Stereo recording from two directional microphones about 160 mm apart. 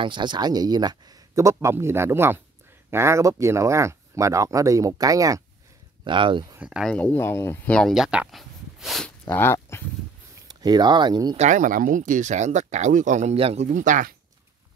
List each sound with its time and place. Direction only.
0.0 s speech: 30° right (ahead or behind)
6.6 s speech: 5° right (ahead or behind)
6.9 s speech: 10° left (ahead or behind)
7.7 s speech: centre (ahead or behind)
9.2 s speech: 15° left (ahead or behind)
10.5 s speech: 25° right (ahead or behind)
11.3 s speech: 50° right (ahead or behind)
13.7 s speech: 55° right (ahead or behind)